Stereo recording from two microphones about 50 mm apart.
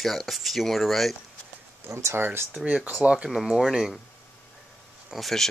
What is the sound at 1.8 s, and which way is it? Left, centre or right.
Speech, right.